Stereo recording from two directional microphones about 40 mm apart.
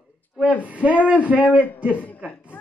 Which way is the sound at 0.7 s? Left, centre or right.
Right.